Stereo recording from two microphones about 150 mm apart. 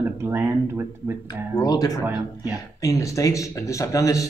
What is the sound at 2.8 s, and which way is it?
Speech, 20° left (ahead or behind).